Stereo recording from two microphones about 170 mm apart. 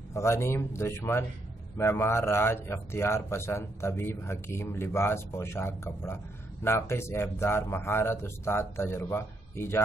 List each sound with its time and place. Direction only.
0.1 s a man's voice: 15° left (ahead or behind)